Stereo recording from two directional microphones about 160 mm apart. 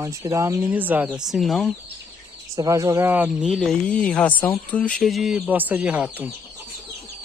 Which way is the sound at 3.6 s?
5° left (ahead or behind).